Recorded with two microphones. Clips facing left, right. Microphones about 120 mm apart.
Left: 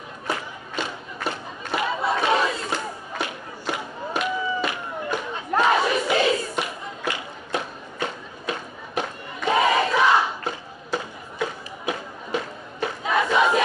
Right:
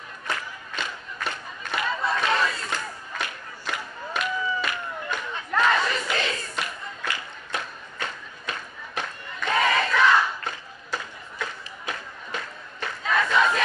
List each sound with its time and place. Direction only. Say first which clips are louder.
0.7 s crowd: left 3 dB; 30° left (ahead or behind)
1.9 s battle cry: left 2 dB; 10° left (ahead or behind)
2.3 s crowd: left 3 dB; 15° left (ahead or behind)
3.7 s a sound: left 3 dB; 20° left (ahead or behind)
5.3 s battle cry: left 2 dB; 25° left (ahead or behind)
5.8 s battle cry: left 6 dB; 15° left (ahead or behind)